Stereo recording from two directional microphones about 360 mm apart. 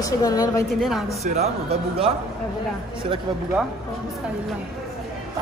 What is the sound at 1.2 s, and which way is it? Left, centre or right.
Speech, centre.